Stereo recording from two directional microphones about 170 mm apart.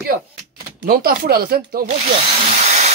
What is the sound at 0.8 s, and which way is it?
Speech, 60° right (ahead or behind).